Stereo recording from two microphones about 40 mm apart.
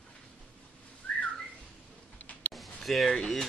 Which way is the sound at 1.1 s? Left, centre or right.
Left.